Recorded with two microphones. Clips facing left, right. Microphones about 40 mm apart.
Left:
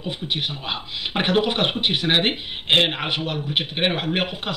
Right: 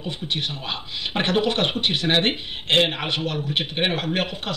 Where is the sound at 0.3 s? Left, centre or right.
Centre.